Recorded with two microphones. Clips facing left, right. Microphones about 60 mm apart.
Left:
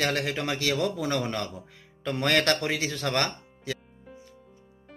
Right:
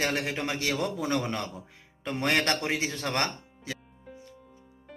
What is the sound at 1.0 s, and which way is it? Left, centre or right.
Speech, centre.